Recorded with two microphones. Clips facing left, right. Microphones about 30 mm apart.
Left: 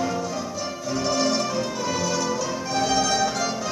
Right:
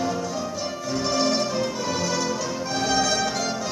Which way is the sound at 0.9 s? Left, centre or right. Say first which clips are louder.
Even; centre.